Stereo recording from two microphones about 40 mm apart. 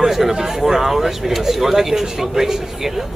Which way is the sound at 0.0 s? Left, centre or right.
Centre.